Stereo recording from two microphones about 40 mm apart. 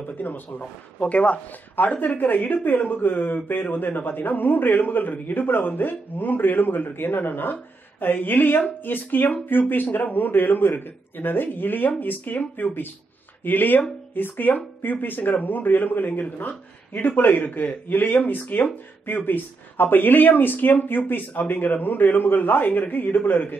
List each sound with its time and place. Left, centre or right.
0.2 s a man's voice: left
0.9 s speech: left
1.8 s a man's voice: left
9.8 s speech: left
10.1 s a man's voice: left